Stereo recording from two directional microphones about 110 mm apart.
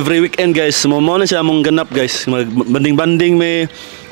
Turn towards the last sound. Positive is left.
turn(degrees=-15)  # may be behind; listen again after turning